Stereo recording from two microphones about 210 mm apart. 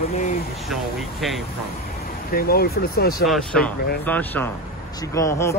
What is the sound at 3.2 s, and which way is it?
Speech, 5° left (ahead or behind).